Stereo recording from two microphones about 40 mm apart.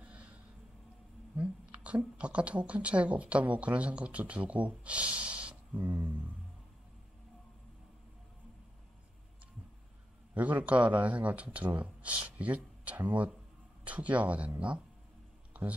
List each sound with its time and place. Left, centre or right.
0.0 s a sound: right
1.3 s whispering: right
2.1 s speech: right
5.8 s speech: right
10.3 s speech: right